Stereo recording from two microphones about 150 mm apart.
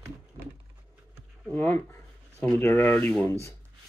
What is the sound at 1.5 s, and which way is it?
Speech, 10° left (ahead or behind).